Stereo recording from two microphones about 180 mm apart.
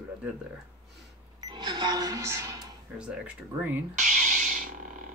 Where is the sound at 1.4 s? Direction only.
25° right (ahead or behind).